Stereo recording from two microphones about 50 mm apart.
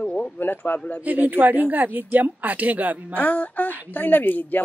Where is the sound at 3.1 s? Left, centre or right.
Left.